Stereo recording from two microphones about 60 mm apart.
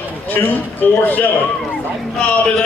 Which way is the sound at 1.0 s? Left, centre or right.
Left.